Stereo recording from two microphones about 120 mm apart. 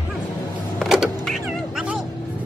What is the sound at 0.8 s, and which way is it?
Power windows, centre (ahead or behind).